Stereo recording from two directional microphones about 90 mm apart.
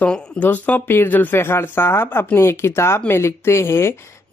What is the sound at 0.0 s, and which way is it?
Speech, 20° left (ahead or behind).